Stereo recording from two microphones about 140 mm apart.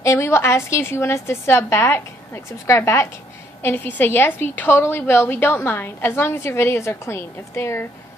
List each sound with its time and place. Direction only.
0.0 s a woman's voice: 20° left (ahead or behind)